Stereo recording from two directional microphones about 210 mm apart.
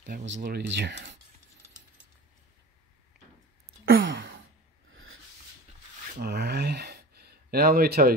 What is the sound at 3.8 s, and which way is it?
Sigh, 65° right (ahead or behind).